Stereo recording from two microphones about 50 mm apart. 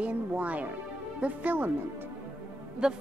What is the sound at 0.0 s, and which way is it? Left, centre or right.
Speech, right.